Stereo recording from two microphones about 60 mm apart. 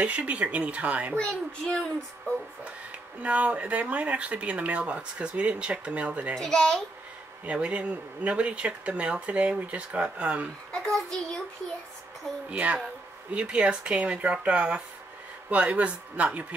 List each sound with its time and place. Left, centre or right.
0.0 s speech: right
1.1 s a child's voice: centre
3.2 s speech: right
6.3 s a child's voice: centre
7.4 s speech: right
10.7 s a child's voice: centre
12.4 s speech: right